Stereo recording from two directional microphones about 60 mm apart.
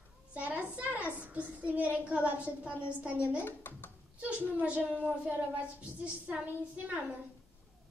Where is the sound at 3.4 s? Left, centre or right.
Left.